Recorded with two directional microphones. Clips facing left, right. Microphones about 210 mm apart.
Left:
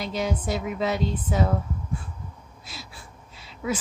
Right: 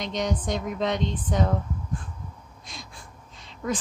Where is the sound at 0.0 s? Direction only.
5° left (ahead or behind).